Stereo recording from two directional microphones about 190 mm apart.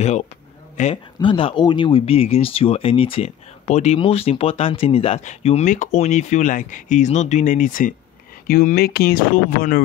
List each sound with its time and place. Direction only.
0.8 s speech: 40° left (ahead or behind)
1.2 s speech: 25° left (ahead or behind); by 9.8 s 50° left (ahead or behind)